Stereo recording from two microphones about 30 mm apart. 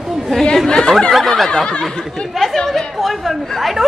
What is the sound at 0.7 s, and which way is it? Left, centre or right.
Speech, left.